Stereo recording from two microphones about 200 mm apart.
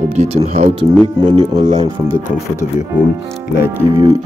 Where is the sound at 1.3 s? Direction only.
20° right (ahead or behind).